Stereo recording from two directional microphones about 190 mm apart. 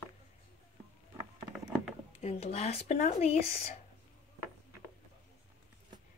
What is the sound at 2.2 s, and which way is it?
A woman's voice, 35° left (ahead or behind).